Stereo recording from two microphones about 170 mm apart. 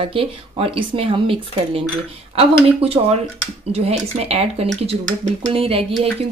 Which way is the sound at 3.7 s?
40° right (ahead or behind).